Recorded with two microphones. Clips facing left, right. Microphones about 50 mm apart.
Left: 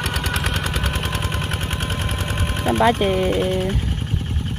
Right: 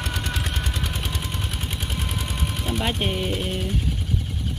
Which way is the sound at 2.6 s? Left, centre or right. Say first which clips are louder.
Left 11 dB; left.